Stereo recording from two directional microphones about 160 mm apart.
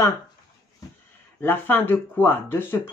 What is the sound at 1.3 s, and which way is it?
Speech, 10° left (ahead or behind).